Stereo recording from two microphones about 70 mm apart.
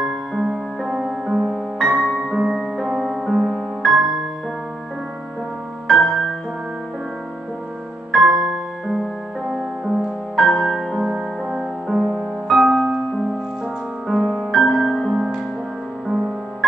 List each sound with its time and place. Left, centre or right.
0.0 s music: centre
1.5 s music: centre
2.2 s music: centre
5.9 s music: centre
8.1 s music: centre